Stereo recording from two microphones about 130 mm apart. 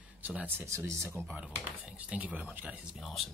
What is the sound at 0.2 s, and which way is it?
Speech, 10° right (ahead or behind).